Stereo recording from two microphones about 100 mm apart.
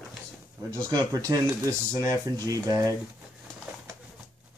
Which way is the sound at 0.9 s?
40° right (ahead or behind).